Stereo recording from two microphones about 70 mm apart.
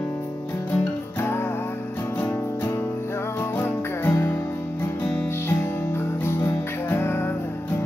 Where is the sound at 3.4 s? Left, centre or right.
Left.